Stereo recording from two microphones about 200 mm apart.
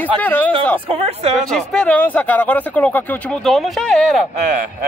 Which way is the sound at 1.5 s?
5° left (ahead or behind).